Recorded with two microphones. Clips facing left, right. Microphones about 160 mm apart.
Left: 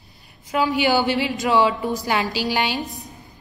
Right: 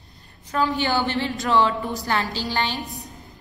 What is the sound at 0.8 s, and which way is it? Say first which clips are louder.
A woman's voice: left 4 dB; 10° left (ahead or behind).